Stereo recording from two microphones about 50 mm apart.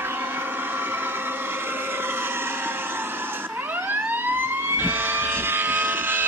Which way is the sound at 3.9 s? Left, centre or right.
Right.